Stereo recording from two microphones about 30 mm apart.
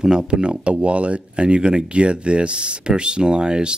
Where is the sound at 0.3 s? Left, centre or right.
Right.